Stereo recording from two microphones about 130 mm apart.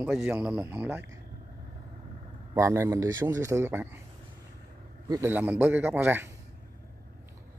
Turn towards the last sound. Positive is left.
turn(degrees=-15)  # may be behind; listen again after turning